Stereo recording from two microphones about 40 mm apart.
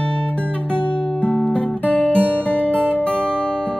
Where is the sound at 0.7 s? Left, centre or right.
Left.